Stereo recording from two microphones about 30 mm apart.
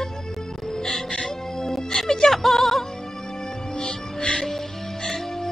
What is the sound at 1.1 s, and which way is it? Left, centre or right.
Music, centre.